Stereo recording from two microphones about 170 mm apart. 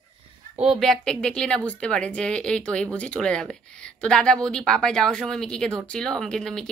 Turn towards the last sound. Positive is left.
turn(degrees=5)  # may be behind; listen again after turning